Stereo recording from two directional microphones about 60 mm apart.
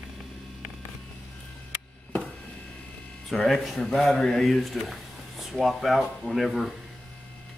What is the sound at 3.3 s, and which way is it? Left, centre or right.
Speech, centre.